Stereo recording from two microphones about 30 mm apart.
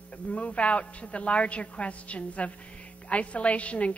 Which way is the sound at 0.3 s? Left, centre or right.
Left.